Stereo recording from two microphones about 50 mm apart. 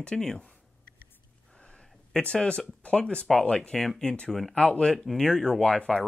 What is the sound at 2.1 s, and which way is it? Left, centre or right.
Speech, centre.